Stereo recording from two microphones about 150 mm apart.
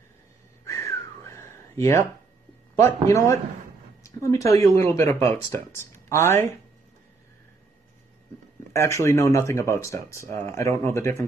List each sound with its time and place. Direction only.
0.7 s whistling: 20° left (ahead or behind)
2.7 s speech: 20° left (ahead or behind)
8.7 s speech: 20° left (ahead or behind)